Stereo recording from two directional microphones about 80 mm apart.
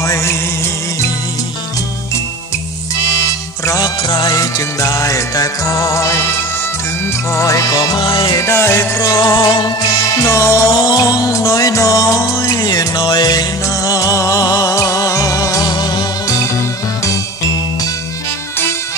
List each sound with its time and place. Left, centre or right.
0.0 s music: left
3.6 s music: left
7.3 s music: left
8.0 s music: left
8.3 s music: left
9.0 s music: left
10.2 s music: left
10.7 s music: left
15.7 s music: left